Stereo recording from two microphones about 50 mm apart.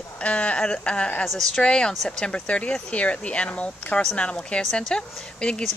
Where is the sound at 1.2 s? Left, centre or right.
Centre.